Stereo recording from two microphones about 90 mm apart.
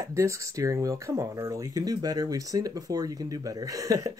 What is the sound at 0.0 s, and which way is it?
Speech, 35° right (ahead or behind).